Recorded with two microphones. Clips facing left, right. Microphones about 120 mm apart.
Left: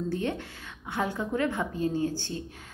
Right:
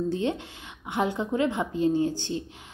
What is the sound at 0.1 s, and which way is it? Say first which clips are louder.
A woman's voice: right 3 dB; 20° right (ahead or behind).